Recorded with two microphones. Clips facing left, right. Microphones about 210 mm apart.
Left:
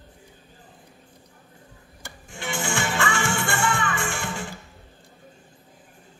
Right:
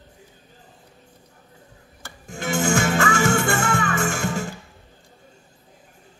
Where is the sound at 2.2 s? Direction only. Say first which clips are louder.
Right 7 dB; 40° right (ahead or behind).